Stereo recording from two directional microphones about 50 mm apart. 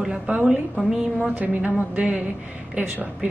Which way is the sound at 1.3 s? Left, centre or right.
Right.